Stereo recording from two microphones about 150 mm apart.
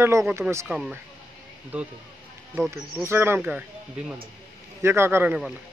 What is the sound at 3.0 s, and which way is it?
Speech, 15° right (ahead or behind).